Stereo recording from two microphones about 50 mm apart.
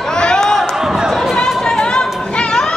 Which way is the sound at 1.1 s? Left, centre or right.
Centre.